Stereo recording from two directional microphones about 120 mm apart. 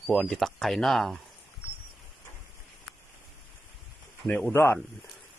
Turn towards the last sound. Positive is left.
turn(degrees=20)  # may be behind; listen again after turning